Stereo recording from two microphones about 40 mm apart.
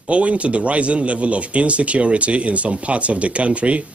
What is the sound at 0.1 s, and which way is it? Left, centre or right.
Speech, right.